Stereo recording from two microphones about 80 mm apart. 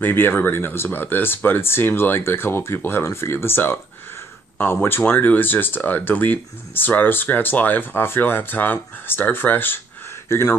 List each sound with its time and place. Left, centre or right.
0.0 s speech: left
4.8 s speech: left
10.2 s speech: left